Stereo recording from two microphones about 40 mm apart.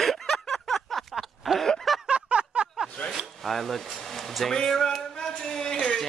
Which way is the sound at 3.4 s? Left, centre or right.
Centre.